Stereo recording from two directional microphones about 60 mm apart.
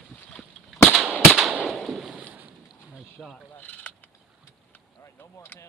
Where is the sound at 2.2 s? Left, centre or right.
Right.